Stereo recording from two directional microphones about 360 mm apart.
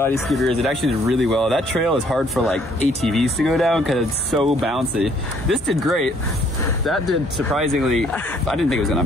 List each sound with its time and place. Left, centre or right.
0.0 s speech: centre
7.5 s speech: centre